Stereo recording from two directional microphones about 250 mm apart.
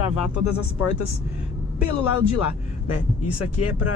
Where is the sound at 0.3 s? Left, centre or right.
Left.